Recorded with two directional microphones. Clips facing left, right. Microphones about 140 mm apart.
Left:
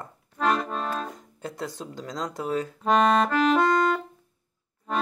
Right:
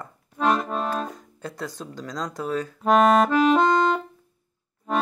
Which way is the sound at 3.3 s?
20° right (ahead or behind).